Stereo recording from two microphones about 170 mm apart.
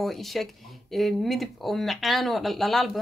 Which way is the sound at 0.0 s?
Centre (ahead or behind).